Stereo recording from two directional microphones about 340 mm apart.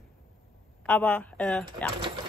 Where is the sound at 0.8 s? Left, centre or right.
Centre.